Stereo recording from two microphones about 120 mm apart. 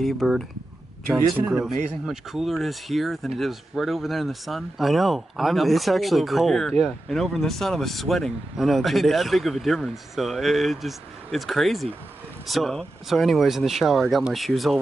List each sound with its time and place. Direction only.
0.0 s speech: centre (ahead or behind)
1.5 s speech: centre (ahead or behind)